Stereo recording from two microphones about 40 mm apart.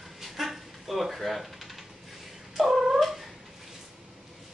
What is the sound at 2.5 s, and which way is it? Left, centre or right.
Cat, centre.